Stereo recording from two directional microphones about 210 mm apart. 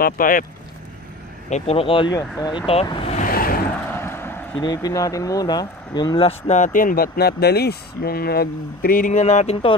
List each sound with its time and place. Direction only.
0.0 s speech: 40° left (ahead or behind)
1.5 s speech: 30° left (ahead or behind)
3.3 s vehicle: 45° left (ahead or behind)
3.9 s speech: 10° left (ahead or behind); by 9.8 s 30° left (ahead or behind)